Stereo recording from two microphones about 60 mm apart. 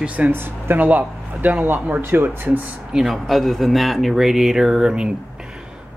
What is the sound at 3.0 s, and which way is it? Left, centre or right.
Speech, centre.